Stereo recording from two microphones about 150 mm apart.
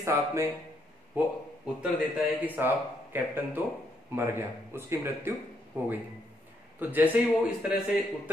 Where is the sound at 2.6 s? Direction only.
15° right (ahead or behind).